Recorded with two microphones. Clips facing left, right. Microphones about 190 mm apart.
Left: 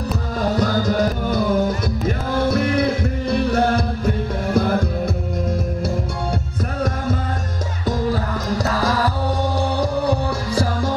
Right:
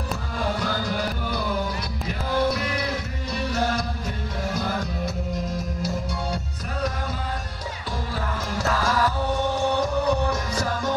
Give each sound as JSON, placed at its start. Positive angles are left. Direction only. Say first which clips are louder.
{"t": 0.4, "sound": "music", "louder": "left 7 dB", "side_deg": 40}
{"t": 8.5, "sound": "music", "louder": "left 4 dB", "side_deg": 35}